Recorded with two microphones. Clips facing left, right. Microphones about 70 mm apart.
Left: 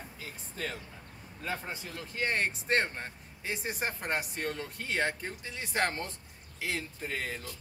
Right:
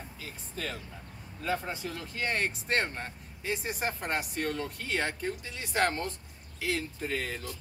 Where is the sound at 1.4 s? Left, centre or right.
Left.